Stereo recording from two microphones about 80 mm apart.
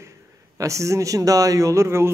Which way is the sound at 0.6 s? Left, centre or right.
Right.